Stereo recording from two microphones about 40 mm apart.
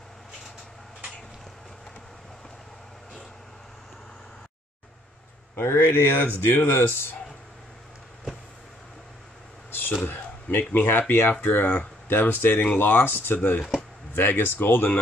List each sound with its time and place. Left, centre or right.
5.6 s speech: left
9.7 s a sound: left
10.8 s speech: left
11.4 s speech: left
12.1 s speech: left